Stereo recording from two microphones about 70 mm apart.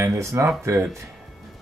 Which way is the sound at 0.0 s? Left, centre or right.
Right.